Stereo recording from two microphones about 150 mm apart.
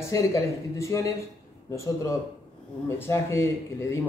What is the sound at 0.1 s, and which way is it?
A man's voice, 20° left (ahead or behind).